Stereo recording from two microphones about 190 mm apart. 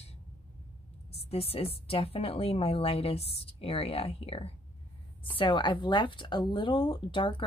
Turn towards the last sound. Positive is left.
turn(degrees=25)  # may be behind; listen again after turning